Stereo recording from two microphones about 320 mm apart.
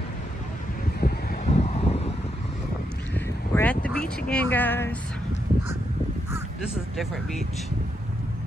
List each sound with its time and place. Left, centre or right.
1.0 s a sound: left
3.5 s vehicle: centre
4.2 s speech: centre